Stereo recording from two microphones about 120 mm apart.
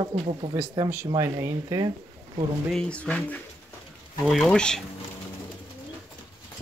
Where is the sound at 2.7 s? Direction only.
10° left (ahead or behind).